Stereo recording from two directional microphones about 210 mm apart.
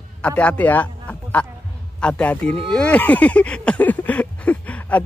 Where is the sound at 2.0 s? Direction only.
5° left (ahead or behind).